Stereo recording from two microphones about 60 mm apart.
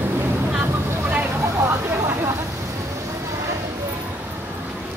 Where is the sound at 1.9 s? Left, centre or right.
Right.